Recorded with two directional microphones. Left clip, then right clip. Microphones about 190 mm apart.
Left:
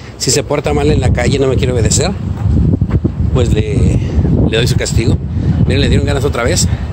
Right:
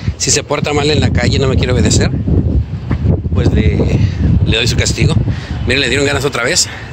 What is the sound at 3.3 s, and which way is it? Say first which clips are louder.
Speech: left 2 dB; 25° left (ahead or behind).